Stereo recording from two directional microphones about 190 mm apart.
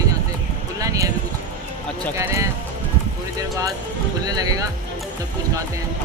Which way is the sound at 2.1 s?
15° right (ahead or behind).